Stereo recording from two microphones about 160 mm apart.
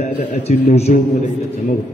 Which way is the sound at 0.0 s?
45° left (ahead or behind).